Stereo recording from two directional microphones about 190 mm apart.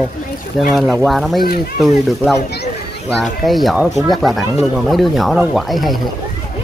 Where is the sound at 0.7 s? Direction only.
Centre (ahead or behind).